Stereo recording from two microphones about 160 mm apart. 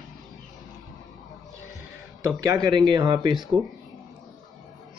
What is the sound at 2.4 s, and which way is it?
Speech, 25° right (ahead or behind).